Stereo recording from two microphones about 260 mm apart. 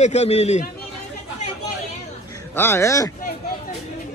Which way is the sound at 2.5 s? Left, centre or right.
Centre.